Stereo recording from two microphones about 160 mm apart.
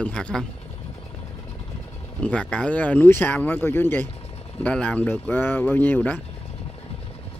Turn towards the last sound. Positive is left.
turn(degrees=10)  # may be behind; listen again after turning